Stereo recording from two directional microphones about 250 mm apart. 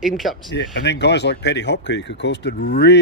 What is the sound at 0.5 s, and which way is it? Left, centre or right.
Speech, left.